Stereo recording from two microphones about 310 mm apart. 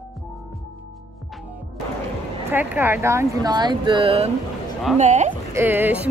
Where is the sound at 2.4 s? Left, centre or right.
Centre; by 5.3 s right.